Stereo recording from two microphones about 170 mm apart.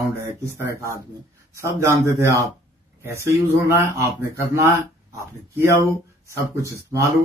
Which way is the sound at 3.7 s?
15° right (ahead or behind).